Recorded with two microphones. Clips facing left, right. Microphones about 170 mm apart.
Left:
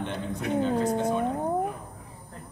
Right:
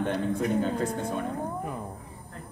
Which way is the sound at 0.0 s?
45° right (ahead or behind).